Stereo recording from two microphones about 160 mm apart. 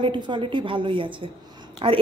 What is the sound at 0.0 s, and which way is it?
A woman's voice, 30° right (ahead or behind).